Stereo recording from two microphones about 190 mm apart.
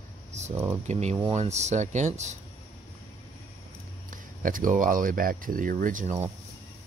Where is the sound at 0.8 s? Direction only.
35° right (ahead or behind).